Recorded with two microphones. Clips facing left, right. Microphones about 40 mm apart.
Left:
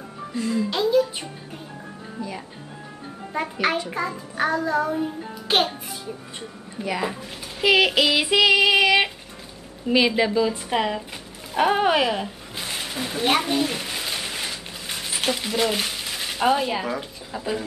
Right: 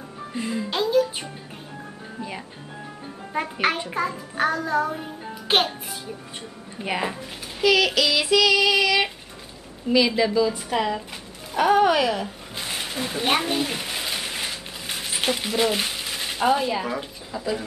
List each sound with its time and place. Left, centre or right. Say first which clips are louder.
0.3 s speech: left 3 dB; right
0.7 s music: even; centre
3.6 s a child's voice: even; centre
3.9 s music: right 1 dB; centre
6.8 s speech: even; right
7.6 s child singing: left 1 dB; left
12.5 s a sound: even; centre
16.4 s speech: even; centre